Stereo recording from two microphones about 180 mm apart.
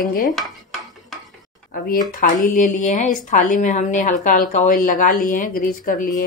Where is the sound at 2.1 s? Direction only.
45° left (ahead or behind).